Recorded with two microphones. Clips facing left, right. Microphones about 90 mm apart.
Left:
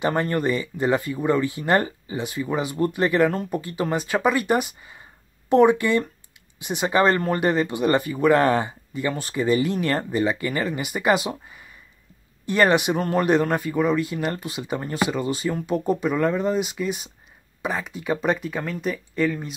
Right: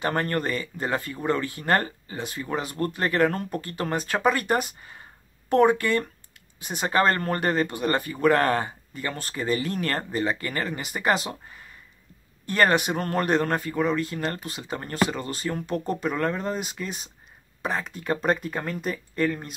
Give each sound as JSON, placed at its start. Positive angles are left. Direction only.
{"t": 0.0, "sound": "speech", "side_deg": 10}
{"t": 12.4, "sound": "speech", "side_deg": 15}